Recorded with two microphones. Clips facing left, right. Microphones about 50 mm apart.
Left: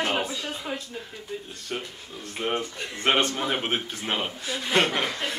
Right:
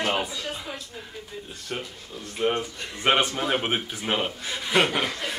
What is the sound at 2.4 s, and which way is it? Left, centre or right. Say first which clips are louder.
Speech: right 3 dB; centre.